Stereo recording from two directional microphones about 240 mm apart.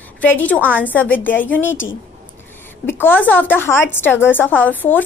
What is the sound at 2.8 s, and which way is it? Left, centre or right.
A woman's voice, centre.